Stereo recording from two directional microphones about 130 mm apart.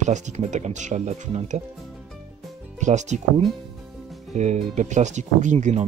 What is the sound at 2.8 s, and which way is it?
Speech, 65° right (ahead or behind).